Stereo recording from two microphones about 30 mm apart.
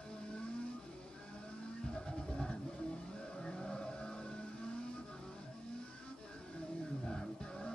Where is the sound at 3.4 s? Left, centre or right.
Left.